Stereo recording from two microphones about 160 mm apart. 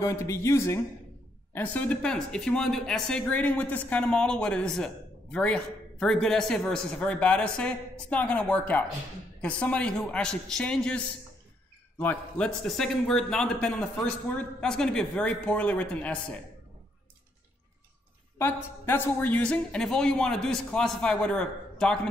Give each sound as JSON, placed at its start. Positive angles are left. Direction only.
{"t": 0.0, "sound": "a woman's voice", "side_deg": 15}
{"t": 18.4, "sound": "a woman's voice", "side_deg": 15}